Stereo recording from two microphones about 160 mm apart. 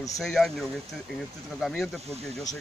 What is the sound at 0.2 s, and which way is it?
Speech, centre (ahead or behind).